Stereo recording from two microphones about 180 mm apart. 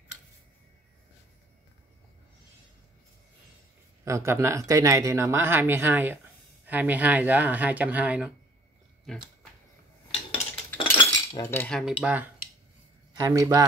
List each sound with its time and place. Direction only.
4.0 s speech: 15° right (ahead or behind)
10.8 s cutlery: 25° left (ahead or behind)
11.5 s cutlery: 10° left (ahead or behind)
11.8 s speech: 5° right (ahead or behind)
13.1 s speech: 20° right (ahead or behind)